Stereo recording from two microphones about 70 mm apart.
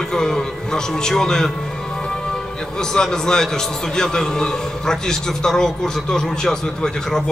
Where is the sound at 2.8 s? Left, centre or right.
Centre.